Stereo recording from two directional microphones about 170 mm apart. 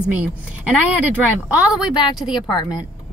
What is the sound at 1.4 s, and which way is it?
Speech, 5° right (ahead or behind).